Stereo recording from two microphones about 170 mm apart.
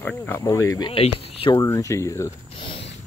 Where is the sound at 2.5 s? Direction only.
30° left (ahead or behind).